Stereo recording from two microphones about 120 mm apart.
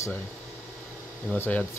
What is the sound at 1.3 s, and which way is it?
Speech, 15° left (ahead or behind).